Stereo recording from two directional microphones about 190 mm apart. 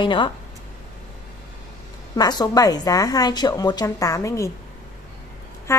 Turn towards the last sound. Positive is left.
turn(degrees=15)  # may be behind; listen again after turning